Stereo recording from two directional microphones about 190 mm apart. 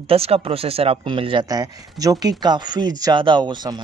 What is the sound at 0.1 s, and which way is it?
Speech, 30° right (ahead or behind).